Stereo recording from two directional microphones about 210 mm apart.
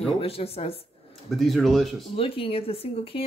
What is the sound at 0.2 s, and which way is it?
Speech, 30° left (ahead or behind).